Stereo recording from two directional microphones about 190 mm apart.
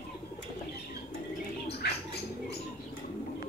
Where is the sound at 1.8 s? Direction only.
55° left (ahead or behind).